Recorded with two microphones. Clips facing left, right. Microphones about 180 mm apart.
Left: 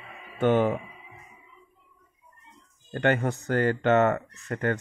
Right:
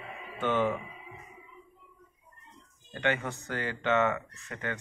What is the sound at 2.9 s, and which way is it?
Speech, 45° left (ahead or behind).